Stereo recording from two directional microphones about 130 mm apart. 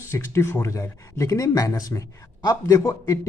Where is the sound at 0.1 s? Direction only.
20° left (ahead or behind).